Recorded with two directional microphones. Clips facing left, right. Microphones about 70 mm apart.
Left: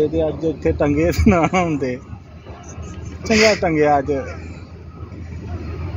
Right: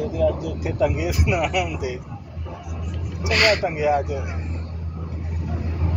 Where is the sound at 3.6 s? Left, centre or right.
Left.